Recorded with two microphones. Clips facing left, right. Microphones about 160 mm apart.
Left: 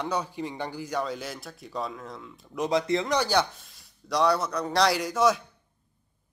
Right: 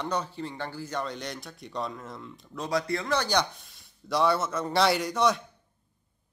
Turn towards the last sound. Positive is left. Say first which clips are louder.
# left 2 dB
turn(degrees=0)  # may be behind; listen again after turning